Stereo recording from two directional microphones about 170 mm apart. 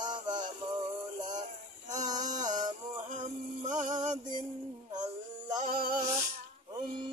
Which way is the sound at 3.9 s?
45° right (ahead or behind).